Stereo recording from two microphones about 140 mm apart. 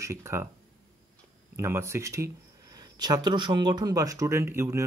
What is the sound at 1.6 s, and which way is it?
Speech, 20° right (ahead or behind).